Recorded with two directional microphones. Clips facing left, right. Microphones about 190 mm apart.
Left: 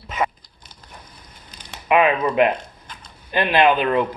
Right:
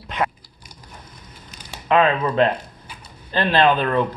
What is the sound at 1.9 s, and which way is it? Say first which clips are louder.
Speech: even; 10° left (ahead or behind).